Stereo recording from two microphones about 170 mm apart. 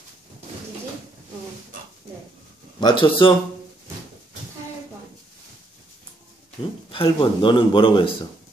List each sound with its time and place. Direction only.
2.8 s speech: 30° left (ahead or behind)
6.9 s a man's voice: 30° left (ahead or behind)